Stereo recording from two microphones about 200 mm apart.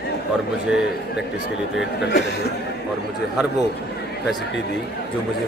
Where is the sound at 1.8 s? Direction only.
55° left (ahead or behind).